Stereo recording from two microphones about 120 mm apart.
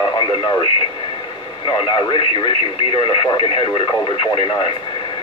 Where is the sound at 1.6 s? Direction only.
40° left (ahead or behind).